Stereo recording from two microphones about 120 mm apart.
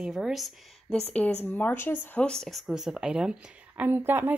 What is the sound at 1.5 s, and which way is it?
Speech, 15° left (ahead or behind).